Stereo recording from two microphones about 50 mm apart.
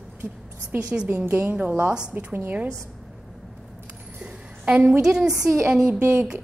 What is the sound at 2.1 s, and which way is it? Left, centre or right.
Speech, right.